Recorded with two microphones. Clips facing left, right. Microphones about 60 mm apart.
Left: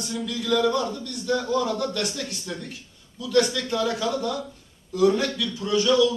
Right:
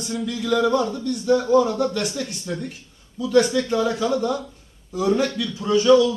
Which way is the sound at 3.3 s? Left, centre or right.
Right.